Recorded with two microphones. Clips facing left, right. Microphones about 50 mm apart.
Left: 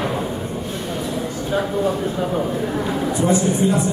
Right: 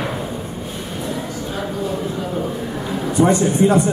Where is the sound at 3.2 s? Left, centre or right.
Right.